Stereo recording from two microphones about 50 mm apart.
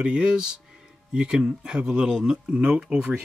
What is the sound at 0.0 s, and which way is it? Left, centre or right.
Speech, right.